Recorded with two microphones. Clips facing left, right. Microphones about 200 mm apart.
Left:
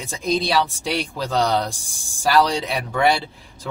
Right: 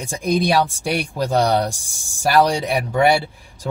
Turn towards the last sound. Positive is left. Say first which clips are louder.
# right 4 dB
turn(degrees=-10)  # may be behind; listen again after turning